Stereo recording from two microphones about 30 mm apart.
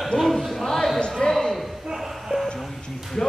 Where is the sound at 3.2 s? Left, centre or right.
Centre.